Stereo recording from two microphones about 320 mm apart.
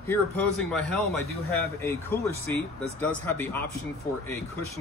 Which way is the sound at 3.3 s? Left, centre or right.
Centre.